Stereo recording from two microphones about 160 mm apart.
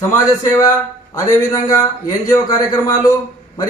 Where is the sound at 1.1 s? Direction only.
20° left (ahead or behind).